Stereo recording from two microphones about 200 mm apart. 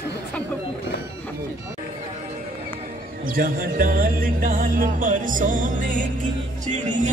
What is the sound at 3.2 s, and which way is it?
Speech, 45° right (ahead or behind).